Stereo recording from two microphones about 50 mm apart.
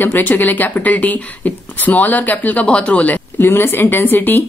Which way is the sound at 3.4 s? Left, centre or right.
Left.